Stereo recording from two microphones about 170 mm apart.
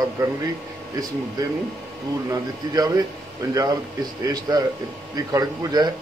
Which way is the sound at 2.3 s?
20° right (ahead or behind).